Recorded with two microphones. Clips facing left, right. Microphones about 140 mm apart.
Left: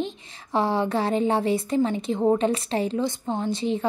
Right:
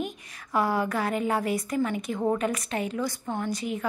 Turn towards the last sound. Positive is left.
turn(degrees=30)  # may be behind; listen again after turning